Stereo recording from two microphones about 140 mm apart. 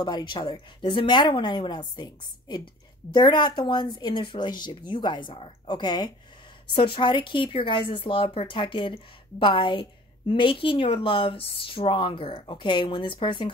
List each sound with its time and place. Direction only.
0.0 s speech: 35° left (ahead or behind)